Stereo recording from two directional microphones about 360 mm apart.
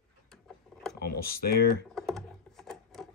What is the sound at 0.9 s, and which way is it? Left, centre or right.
Speech, left.